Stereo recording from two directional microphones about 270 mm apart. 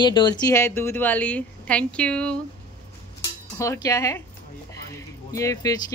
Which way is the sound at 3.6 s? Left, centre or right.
Centre.